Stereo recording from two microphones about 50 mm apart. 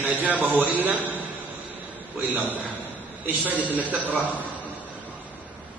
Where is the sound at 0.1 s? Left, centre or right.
Right.